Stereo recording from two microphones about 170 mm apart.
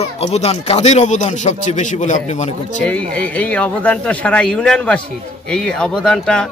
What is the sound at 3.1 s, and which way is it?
A man's voice, 5° left (ahead or behind).